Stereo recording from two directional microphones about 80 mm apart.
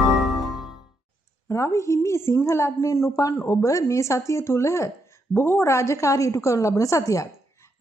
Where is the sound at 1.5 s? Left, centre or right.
Left.